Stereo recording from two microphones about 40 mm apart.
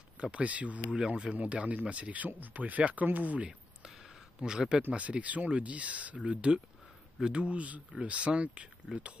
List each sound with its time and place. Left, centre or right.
0.2 s speech: right
3.4 s a sound: centre
4.9 s speech: right